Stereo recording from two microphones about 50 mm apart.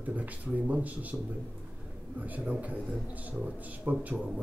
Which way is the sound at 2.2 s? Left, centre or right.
Right.